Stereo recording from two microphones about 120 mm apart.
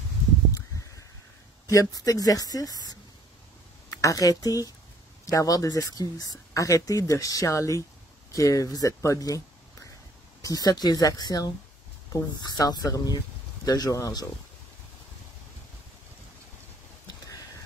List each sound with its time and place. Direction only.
1.7 s speech: 30° left (ahead or behind)